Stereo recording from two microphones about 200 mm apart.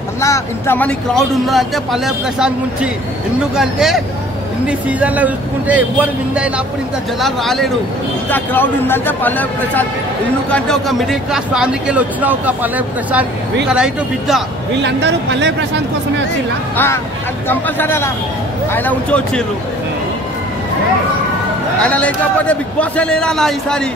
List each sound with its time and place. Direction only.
0.2 s speech: 15° left (ahead or behind)
14.8 s speech: 60° right (ahead or behind)
16.7 s speech: 10° left (ahead or behind)
21.8 s speech: 5° left (ahead or behind)